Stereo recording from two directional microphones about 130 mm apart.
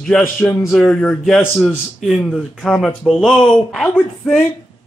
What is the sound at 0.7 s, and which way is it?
Speech, 5° left (ahead or behind).